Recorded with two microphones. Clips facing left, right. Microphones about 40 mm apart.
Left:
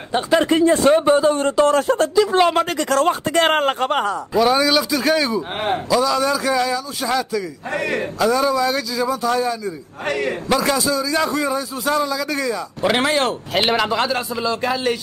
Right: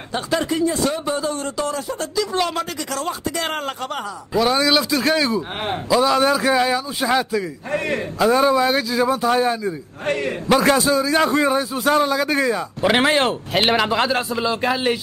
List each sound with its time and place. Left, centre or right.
0.1 s speech: left
0.5 s a man's voice: left
2.1 s speech: left
2.8 s speech: left
4.3 s a man's voice: centre
6.0 s a man's voice: right
10.0 s a man's voice: left
10.5 s a man's voice: right
12.8 s speech: centre
13.5 s speech: centre
14.3 s speech: centre